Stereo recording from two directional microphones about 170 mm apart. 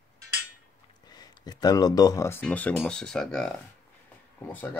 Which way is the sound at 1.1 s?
25° left (ahead or behind).